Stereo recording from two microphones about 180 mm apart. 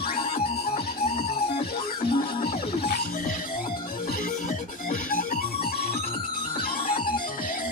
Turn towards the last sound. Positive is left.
turn(degrees=30)  # may be behind; listen again after turning